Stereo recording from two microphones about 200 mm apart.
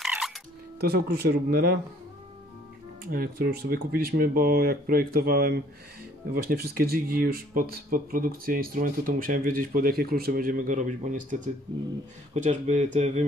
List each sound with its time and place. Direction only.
0.0 s music: centre (ahead or behind)
0.7 s speech: 50° right (ahead or behind)
3.1 s speech: 45° right (ahead or behind)